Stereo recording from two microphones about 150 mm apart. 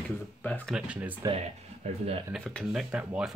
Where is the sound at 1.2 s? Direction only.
45° right (ahead or behind).